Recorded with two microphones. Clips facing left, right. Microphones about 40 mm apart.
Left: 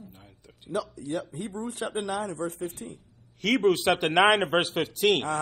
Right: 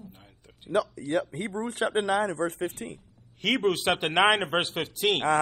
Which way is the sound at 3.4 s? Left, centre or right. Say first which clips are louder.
Left 2 dB; right.